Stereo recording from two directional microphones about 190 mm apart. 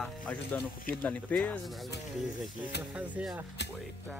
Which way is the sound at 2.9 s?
5° right (ahead or behind).